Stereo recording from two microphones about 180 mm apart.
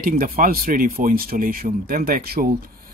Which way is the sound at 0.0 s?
55° right (ahead or behind).